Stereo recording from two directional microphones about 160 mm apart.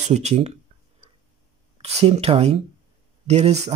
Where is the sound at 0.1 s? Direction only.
40° right (ahead or behind).